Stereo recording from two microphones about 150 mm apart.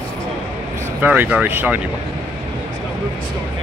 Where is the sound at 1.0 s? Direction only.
10° right (ahead or behind).